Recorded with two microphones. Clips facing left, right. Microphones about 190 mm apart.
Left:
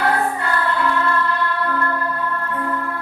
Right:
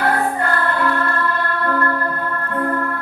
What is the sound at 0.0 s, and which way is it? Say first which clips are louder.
Music: right 1 dB; 55° right (ahead or behind).